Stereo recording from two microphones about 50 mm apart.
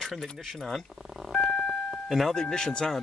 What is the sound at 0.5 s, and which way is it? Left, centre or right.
Telephone dialing, centre.